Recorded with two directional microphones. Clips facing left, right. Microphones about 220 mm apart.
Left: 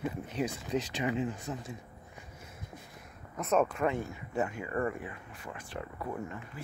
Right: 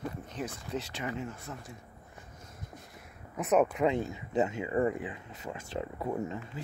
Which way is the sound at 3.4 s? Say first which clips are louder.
Right 2 dB; 15° right (ahead or behind).